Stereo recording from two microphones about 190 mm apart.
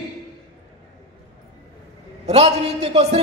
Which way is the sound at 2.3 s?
30° right (ahead or behind).